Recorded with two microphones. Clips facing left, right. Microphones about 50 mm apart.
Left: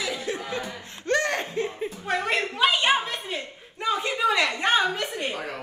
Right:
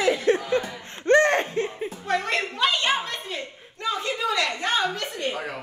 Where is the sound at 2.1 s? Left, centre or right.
Centre.